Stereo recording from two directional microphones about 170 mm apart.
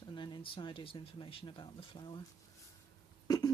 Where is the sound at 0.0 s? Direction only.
25° left (ahead or behind).